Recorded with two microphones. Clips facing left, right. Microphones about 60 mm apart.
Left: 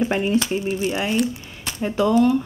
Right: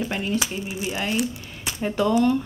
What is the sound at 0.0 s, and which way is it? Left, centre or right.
Speech, left.